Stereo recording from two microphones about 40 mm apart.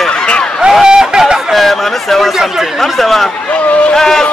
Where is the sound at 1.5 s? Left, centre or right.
Centre.